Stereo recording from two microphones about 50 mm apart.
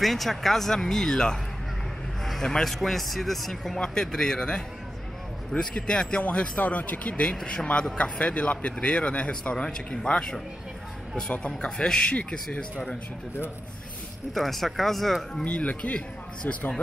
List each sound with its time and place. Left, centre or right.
0.0 s speech: centre
6.6 s a man's voice: left
14.3 s speech: centre
15.4 s a man's voice: left
16.4 s speech: left